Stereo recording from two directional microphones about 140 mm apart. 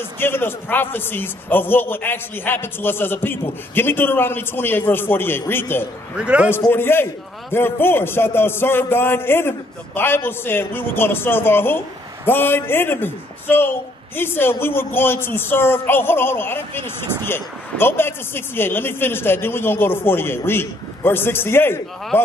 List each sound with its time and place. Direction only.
0.2 s a man's voice: 15° left (ahead or behind)
6.1 s a man's voice: 5° right (ahead or behind)
6.7 s a man's voice: 15° left (ahead or behind)